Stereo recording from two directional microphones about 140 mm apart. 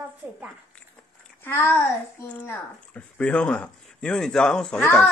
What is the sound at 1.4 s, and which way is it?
Speech, 15° left (ahead or behind).